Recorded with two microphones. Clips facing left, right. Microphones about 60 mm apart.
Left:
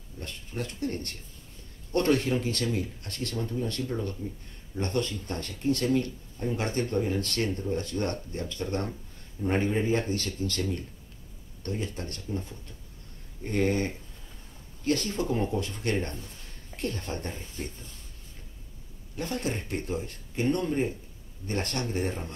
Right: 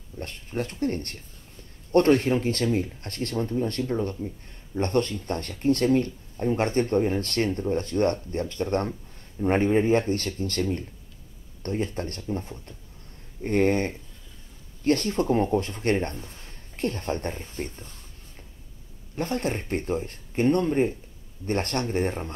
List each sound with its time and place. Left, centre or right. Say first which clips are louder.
0.2 s speech: right 5 dB; right
11.6 s speech: right 5 dB; right
19.1 s speech: right 4 dB; right